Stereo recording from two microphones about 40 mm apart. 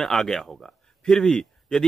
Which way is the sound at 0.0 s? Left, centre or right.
Centre.